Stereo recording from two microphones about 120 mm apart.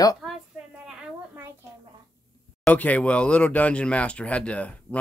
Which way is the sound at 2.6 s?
10° left (ahead or behind).